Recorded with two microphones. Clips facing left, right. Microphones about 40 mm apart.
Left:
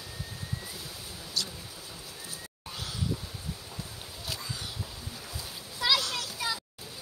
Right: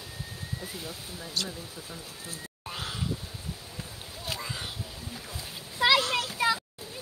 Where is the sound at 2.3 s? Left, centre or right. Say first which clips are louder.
Right 3 dB; right.